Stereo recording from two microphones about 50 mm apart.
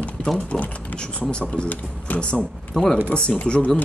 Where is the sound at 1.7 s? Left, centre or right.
Left.